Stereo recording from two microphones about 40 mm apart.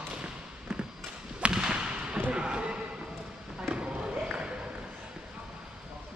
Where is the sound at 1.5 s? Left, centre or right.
Right.